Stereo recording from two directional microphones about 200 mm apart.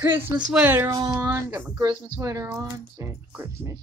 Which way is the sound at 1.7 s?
20° right (ahead or behind).